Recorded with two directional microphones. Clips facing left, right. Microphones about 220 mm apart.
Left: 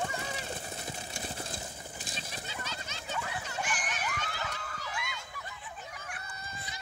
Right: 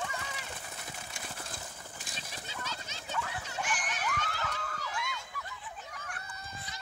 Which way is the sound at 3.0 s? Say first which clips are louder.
Even; 5° left (ahead or behind).